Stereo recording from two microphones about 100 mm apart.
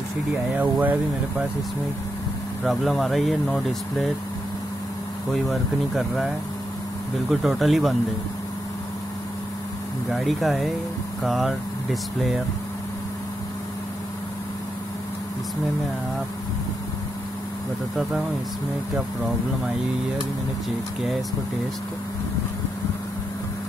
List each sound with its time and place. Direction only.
0.3 s speech: 15° right (ahead or behind)
2.6 s speech: centre (ahead or behind)
5.3 s speech: centre (ahead or behind)
10.1 s speech: centre (ahead or behind)